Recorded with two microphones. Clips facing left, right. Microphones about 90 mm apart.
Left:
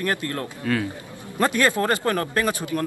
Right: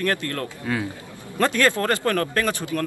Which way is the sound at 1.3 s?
20° left (ahead or behind).